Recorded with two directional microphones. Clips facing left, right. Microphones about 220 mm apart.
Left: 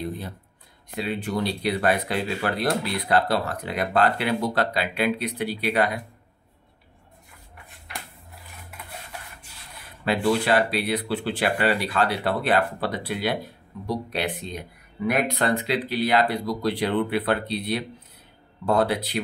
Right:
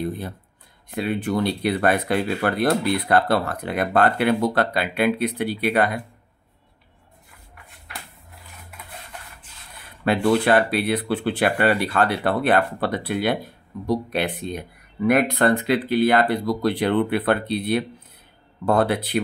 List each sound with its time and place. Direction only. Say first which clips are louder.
0.9 s speech: right 4 dB; 55° right (ahead or behind)
10.0 s speech: right 4 dB; 55° right (ahead or behind)